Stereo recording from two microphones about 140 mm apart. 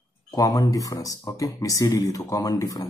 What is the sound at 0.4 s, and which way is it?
Speech, 25° left (ahead or behind).